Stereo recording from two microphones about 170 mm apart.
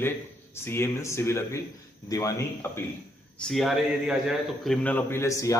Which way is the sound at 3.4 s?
Centre (ahead or behind).